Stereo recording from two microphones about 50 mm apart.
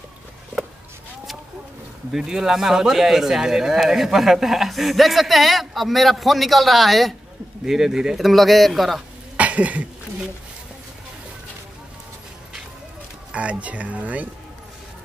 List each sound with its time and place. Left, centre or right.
2.1 s speech: centre
8.3 s speech: centre
9.4 s a sound: right
13.3 s speech: right